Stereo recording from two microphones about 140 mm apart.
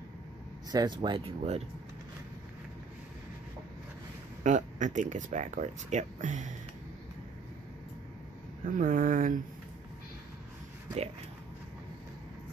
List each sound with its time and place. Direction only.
0.7 s speech: 30° right (ahead or behind)
4.4 s speech: 60° right (ahead or behind)
8.7 s speech: 75° right (ahead or behind)